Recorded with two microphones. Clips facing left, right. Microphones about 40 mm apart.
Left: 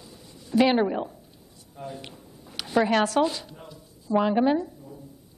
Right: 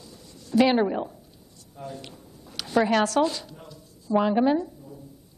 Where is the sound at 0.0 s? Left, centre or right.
Centre.